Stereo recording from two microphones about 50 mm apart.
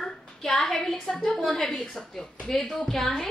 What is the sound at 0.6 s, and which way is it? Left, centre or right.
A woman's voice, centre.